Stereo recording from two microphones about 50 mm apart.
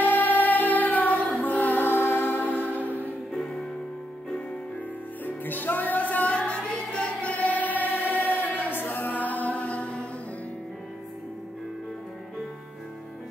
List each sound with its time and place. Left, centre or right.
0.0 s music: left
5.2 s music: left